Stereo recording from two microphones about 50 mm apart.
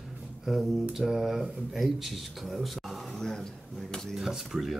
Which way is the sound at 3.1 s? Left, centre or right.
Centre.